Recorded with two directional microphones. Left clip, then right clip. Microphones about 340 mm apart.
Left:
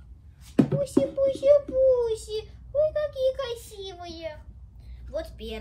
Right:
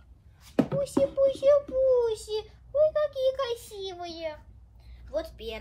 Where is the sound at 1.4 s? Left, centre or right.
Centre.